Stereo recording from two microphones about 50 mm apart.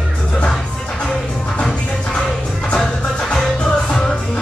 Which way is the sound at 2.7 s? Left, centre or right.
Centre.